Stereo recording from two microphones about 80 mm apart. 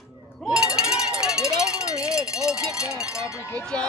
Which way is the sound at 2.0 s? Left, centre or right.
Centre.